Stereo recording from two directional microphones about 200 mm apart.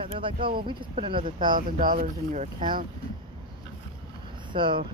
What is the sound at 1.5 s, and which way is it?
Speech, 45° right (ahead or behind).